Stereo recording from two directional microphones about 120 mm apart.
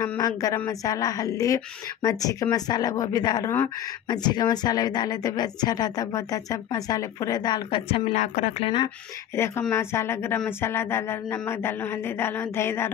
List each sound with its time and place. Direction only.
0.2 s a woman's voice: 30° left (ahead or behind)
8.1 s a woman's voice: 90° left
9.3 s speech: 20° left (ahead or behind)